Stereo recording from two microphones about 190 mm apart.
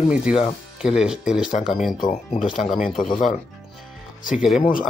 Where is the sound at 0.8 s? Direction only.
5° right (ahead or behind).